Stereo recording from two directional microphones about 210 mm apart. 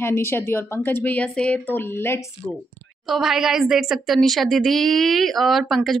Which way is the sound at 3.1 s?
Centre (ahead or behind).